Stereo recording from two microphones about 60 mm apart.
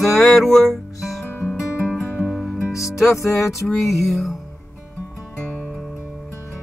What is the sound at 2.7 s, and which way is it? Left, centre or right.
Music, left.